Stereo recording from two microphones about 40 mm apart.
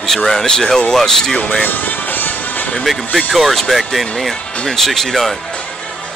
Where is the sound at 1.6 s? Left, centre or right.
Left.